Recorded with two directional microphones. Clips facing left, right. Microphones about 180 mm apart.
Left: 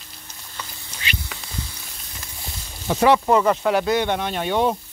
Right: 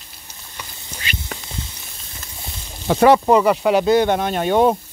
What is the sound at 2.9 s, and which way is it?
Speech, 75° right (ahead or behind).